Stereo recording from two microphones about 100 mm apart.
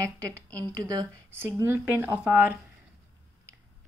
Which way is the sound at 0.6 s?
45° right (ahead or behind).